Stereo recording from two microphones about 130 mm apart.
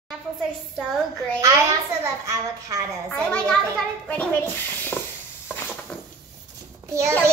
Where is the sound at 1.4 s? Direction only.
25° right (ahead or behind).